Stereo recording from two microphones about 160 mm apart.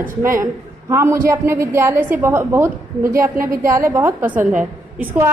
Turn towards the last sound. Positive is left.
turn(degrees=-15)  # may be behind; listen again after turning